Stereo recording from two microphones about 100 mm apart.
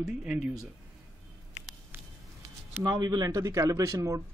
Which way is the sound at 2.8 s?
45° right (ahead or behind).